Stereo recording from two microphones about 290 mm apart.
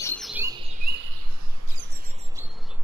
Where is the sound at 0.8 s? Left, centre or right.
Right.